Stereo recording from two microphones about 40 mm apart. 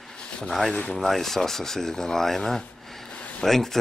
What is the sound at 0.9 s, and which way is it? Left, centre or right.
Speech, centre.